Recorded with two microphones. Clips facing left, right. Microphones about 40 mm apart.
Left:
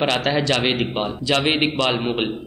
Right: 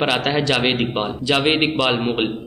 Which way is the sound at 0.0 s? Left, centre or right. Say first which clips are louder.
Right 1 dB; centre.